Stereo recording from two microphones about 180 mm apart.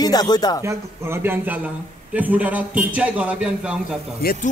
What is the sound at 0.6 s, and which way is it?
A man's voice, 10° right (ahead or behind).